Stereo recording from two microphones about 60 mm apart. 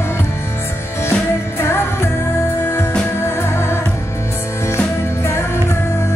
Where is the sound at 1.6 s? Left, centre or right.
Left.